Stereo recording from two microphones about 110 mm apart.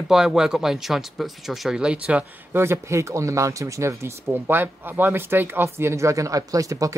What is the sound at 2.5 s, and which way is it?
Speech, 25° right (ahead or behind).